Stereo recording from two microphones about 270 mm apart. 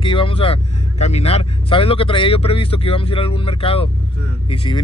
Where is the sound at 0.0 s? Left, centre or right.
Centre.